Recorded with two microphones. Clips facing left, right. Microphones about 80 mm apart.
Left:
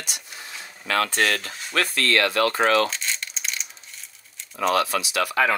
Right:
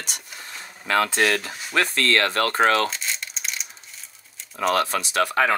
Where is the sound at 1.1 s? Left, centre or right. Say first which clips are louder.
Right 2 dB; centre.